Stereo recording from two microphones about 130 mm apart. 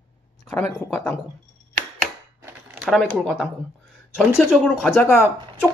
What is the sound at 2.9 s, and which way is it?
Speech, 5° left (ahead or behind).